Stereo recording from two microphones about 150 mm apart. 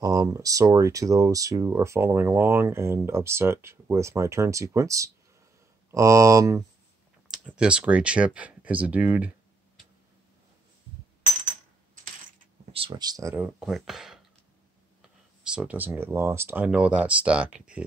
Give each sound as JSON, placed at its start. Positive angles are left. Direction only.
{"t": 0.0, "sound": "speech", "side_deg": -25}
{"t": 7.2, "sound": "speech", "side_deg": -5}
{"t": 12.7, "sound": "speech", "side_deg": -35}
{"t": 13.3, "sound": "speech", "side_deg": -10}
{"t": 15.5, "sound": "speech", "side_deg": -10}